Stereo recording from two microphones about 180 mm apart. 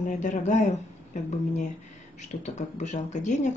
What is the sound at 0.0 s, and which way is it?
Speech, 45° left (ahead or behind).